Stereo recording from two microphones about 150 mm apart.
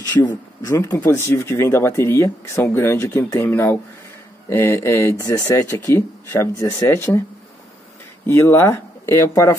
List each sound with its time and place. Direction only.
0.7 s speech: 20° left (ahead or behind)
8.3 s speech: 15° left (ahead or behind)